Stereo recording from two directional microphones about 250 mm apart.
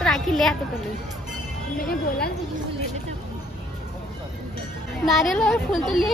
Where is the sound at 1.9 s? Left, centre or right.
Left.